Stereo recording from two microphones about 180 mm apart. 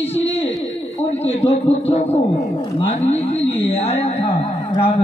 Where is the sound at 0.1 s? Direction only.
35° left (ahead or behind).